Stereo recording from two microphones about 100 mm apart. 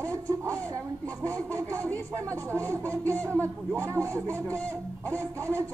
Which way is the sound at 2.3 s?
30° right (ahead or behind).